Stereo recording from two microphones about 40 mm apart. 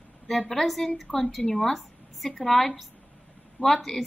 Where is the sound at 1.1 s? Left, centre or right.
Left.